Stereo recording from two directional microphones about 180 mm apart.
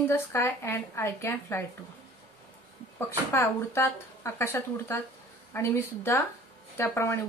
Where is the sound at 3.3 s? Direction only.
15° left (ahead or behind).